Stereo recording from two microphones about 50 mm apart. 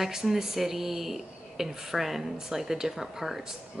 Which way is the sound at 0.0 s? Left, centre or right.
Centre.